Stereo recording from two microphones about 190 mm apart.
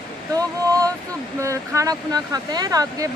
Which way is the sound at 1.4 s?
15° right (ahead or behind).